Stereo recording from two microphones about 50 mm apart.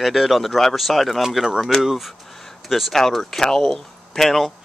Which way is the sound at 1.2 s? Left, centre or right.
Centre.